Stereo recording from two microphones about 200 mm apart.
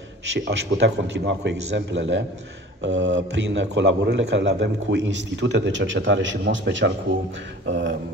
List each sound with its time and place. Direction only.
0.3 s a man's voice: 55° right (ahead or behind)